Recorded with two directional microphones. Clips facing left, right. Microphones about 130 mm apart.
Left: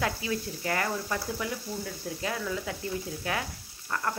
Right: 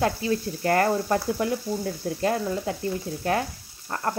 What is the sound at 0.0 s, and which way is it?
Speech, 40° right (ahead or behind).